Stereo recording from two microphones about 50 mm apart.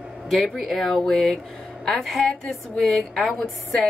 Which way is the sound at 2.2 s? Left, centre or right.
Centre.